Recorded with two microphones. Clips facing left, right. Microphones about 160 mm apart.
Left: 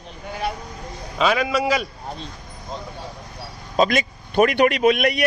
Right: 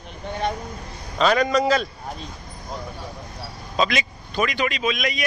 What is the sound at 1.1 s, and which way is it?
Speech, 5° left (ahead or behind).